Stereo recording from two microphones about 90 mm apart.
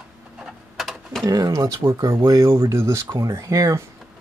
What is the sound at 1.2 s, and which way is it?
Speech, 40° right (ahead or behind).